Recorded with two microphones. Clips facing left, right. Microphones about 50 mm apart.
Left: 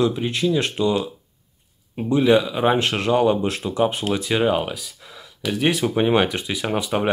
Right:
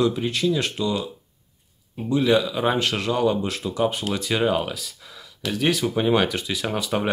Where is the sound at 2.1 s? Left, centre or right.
Centre.